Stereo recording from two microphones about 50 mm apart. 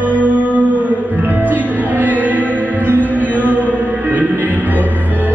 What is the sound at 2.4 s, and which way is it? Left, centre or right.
Music, left.